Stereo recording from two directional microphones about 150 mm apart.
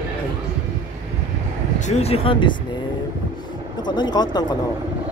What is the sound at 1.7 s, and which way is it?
Speech, 50° left (ahead or behind).